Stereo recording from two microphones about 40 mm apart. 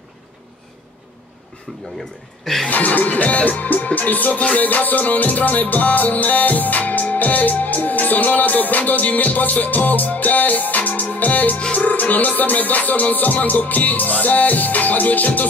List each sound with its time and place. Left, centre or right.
1.7 s speech: centre
2.7 s music: left